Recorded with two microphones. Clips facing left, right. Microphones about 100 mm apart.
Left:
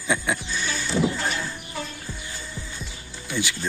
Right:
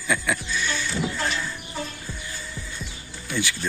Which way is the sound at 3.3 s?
20° left (ahead or behind).